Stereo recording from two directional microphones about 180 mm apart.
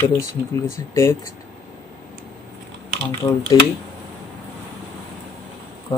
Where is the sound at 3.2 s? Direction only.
20° left (ahead or behind).